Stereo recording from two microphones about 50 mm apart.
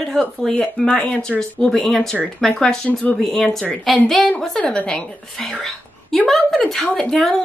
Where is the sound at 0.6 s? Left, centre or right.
Left.